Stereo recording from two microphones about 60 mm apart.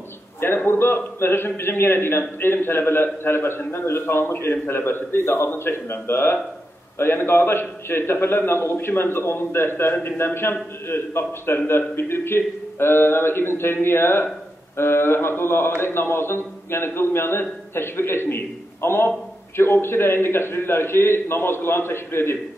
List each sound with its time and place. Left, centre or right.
0.4 s a man's voice: left